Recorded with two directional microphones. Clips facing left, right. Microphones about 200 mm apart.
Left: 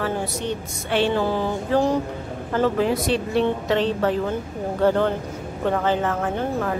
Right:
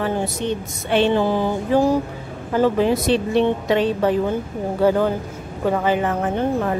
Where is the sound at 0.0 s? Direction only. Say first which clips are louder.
Right 3 dB; 20° right (ahead or behind).